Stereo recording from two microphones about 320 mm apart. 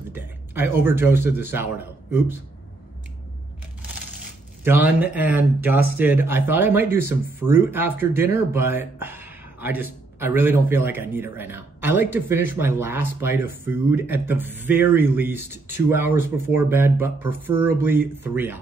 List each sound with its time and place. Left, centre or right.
0.1 s a man's voice: centre
4.6 s speech: centre